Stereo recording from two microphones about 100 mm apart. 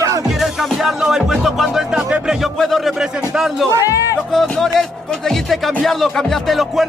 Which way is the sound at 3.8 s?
35° left (ahead or behind).